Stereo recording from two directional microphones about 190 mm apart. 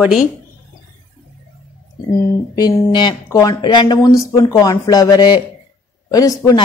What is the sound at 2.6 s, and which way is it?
Speech, 20° left (ahead or behind).